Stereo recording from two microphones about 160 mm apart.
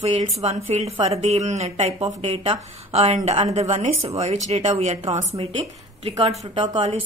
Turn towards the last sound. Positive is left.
turn(degrees=-30)  # may be behind; listen again after turning